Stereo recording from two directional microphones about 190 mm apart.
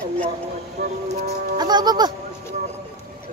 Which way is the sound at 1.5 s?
20° right (ahead or behind).